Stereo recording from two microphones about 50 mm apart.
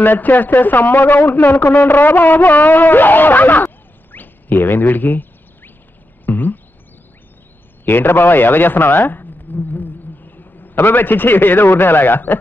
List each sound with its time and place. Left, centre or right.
0.0 s speech: left
3.6 s a sound: left
7.8 s speech: left